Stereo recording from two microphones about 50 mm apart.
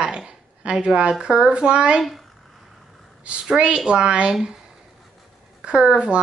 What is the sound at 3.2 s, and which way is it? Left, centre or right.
A woman's voice, right.